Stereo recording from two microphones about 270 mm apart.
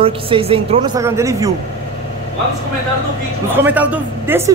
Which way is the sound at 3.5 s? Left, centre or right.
Centre.